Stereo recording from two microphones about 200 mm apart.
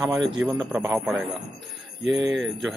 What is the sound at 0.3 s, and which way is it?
Speech, centre (ahead or behind).